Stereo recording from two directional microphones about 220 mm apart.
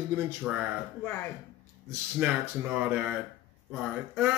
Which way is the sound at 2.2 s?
5° right (ahead or behind).